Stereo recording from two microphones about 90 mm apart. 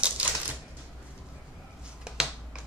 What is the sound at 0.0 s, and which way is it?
Typewriter, 15° right (ahead or behind).